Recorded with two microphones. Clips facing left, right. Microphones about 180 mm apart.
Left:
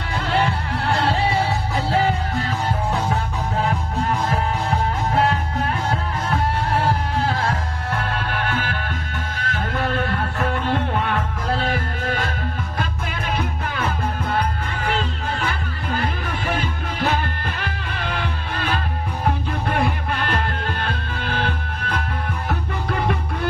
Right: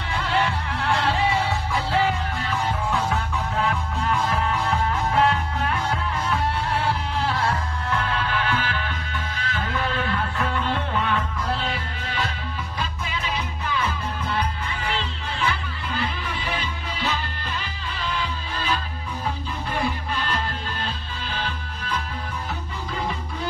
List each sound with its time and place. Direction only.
0.8 s music: 40° left (ahead or behind); by 23.1 s 60° left (ahead or behind)